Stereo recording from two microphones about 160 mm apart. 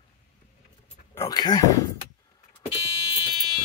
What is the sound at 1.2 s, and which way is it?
Speech, 25° left (ahead or behind).